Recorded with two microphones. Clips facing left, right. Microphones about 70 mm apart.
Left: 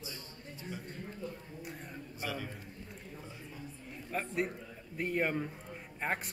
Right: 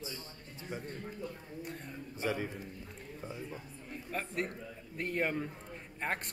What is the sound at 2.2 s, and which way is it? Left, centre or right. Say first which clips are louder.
Speech: right 5 dB; right.